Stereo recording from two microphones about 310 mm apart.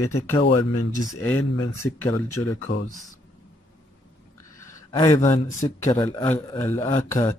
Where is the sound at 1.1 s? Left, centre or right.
Centre.